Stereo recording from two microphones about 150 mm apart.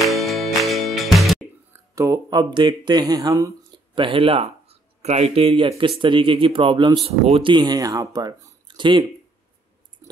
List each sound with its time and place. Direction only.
0.1 s music: centre (ahead or behind)
2.0 s speech: 20° right (ahead or behind)
3.9 s speech: 35° right (ahead or behind)
7.5 s speech: 25° right (ahead or behind)